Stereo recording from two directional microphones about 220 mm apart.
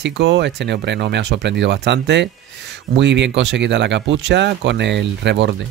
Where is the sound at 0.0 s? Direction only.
55° right (ahead or behind).